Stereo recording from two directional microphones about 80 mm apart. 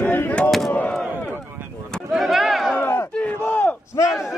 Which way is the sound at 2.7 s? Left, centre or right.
Left.